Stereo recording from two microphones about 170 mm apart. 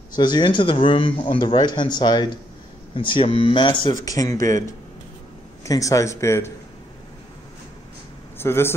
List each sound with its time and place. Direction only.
0.2 s speech: 25° left (ahead or behind)
5.7 s speech: 20° left (ahead or behind)
8.4 s speech: 15° left (ahead or behind)